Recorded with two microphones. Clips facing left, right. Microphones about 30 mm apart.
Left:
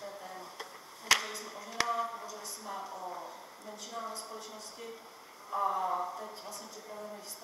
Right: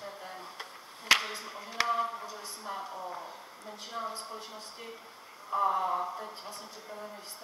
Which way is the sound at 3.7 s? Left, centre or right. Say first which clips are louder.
Right 3 dB; right.